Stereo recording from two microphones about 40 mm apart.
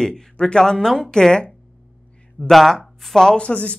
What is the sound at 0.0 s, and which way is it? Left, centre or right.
Speech, centre.